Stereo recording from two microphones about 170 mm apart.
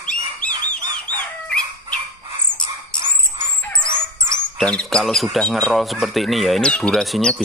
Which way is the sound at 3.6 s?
5° left (ahead or behind).